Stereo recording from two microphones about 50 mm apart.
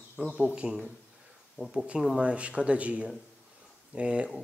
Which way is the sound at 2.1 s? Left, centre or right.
Right.